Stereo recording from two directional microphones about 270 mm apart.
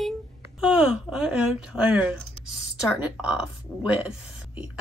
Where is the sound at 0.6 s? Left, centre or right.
Centre.